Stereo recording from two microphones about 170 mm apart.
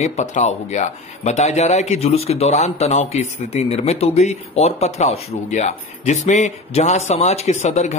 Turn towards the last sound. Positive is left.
turn(degrees=45)  # may be behind; listen again after turning